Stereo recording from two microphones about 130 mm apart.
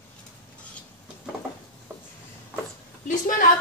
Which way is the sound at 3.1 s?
90° left.